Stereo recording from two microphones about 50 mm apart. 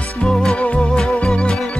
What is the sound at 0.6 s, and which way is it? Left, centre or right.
Music, left.